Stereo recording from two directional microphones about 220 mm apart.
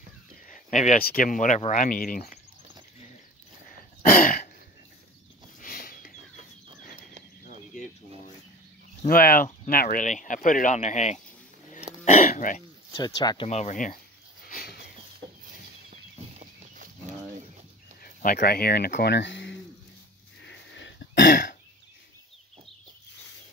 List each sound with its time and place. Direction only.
0.5 s speech: 35° left (ahead or behind)
4.0 s throat clearing: 40° left (ahead or behind)
5.6 s a sound: 40° left (ahead or behind)
9.0 s speech: 40° left (ahead or behind)
12.9 s speech: 20° left (ahead or behind)
13.5 s speech: 30° left (ahead or behind)
14.4 s sniff: 40° left (ahead or behind)
15.9 s livestock: 35° right (ahead or behind)
18.0 s speech: 40° left (ahead or behind); by 19.6 s 55° left (ahead or behind)
20.4 s throat clearing: 55° left (ahead or behind)